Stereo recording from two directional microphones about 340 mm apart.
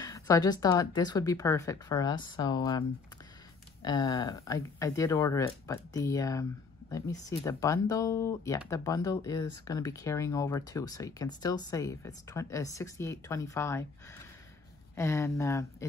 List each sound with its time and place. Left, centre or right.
0.0 s speech: centre
3.8 s speech: centre
7.4 s speech: centre
15.0 s speech: centre